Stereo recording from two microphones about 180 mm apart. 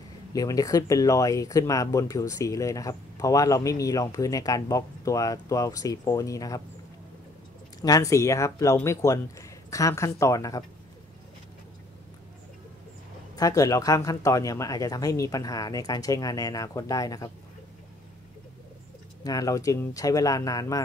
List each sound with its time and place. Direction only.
0.3 s speech: 20° left (ahead or behind)
7.8 s speech: 20° left (ahead or behind)
13.4 s speech: 20° left (ahead or behind)
19.2 s speech: 20° left (ahead or behind)